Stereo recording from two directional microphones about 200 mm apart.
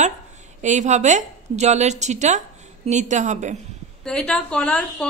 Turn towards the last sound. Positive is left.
turn(degrees=5)  # may be behind; listen again after turning